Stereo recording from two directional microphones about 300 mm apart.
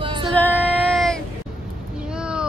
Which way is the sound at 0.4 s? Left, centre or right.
Centre.